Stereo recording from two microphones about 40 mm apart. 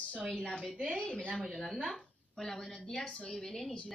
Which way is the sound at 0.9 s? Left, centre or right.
Left.